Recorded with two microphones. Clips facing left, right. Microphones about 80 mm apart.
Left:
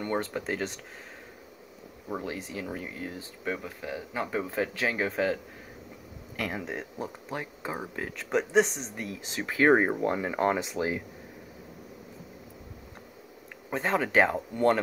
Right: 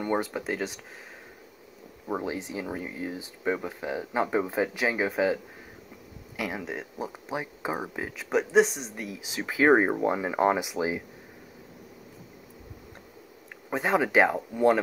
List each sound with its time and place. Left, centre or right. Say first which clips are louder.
0.0 s speech: right 2 dB; centre
2.0 s speech: right 4 dB; right; by 7.1 s centre
7.2 s speech: right 6 dB; centre
13.7 s speech: right 3 dB; centre